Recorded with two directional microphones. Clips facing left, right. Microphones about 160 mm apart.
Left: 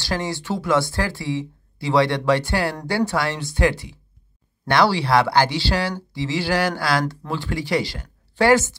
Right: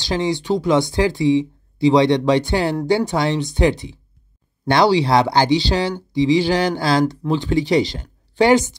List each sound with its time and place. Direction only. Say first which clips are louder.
0.0 s speech: right 5 dB; 20° right (ahead or behind)